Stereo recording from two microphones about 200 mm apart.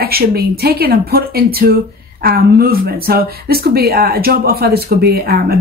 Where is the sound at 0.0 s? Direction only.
50° right (ahead or behind).